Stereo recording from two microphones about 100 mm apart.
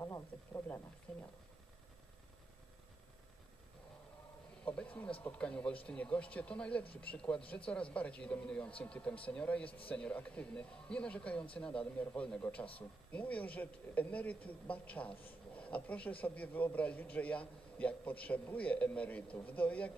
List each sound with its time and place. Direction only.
0.0 s speech: 30° left (ahead or behind)
1.1 s speech: 10° left (ahead or behind)
4.6 s speech: 15° left (ahead or behind)